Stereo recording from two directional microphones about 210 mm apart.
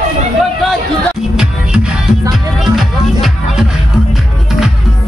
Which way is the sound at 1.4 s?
5° right (ahead or behind).